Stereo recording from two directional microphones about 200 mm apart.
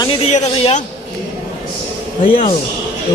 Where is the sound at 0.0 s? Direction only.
30° left (ahead or behind).